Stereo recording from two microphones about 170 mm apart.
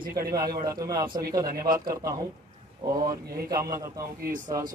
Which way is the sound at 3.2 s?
65° right (ahead or behind).